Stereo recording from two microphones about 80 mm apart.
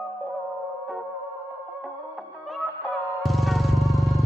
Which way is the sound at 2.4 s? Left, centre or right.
Centre.